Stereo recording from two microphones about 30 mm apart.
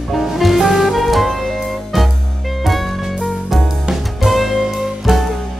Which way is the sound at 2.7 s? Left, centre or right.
Centre.